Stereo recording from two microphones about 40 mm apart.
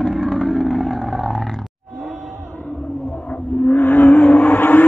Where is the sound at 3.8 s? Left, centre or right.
Left.